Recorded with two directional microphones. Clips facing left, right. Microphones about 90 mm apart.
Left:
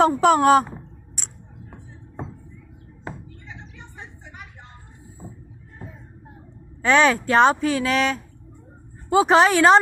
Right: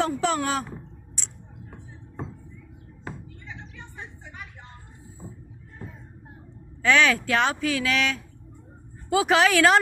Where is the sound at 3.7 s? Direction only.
20° left (ahead or behind).